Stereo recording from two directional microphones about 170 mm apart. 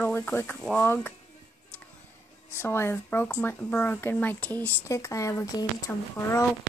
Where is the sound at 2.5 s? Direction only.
15° left (ahead or behind).